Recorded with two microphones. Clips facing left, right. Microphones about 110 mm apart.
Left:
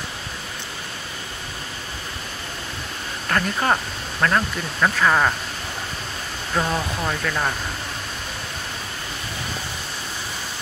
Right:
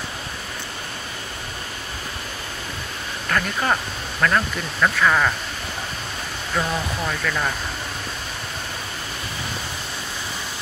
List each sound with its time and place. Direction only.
3.3 s speech: 25° left (ahead or behind)
6.5 s speech: 15° left (ahead or behind)